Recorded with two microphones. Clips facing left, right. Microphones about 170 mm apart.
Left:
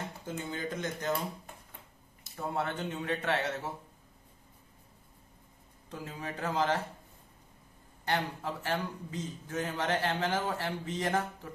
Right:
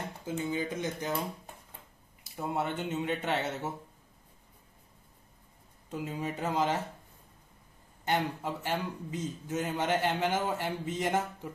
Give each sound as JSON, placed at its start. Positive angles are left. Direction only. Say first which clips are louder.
{"t": 0.3, "sound": "speech", "louder": "right 4 dB", "side_deg": -10}
{"t": 2.2, "sound": "a man's voice", "louder": "right 1 dB", "side_deg": -15}
{"t": 5.9, "sound": "speech", "louder": "right 5 dB", "side_deg": -15}
{"t": 8.0, "sound": "a man's voice", "louder": "right 2 dB", "side_deg": -20}